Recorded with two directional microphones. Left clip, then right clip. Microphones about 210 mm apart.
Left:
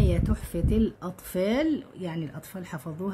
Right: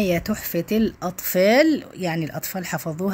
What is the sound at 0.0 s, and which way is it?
Speech, 20° right (ahead or behind).